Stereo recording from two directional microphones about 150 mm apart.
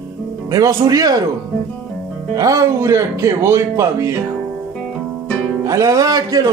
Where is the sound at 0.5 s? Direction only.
25° right (ahead or behind).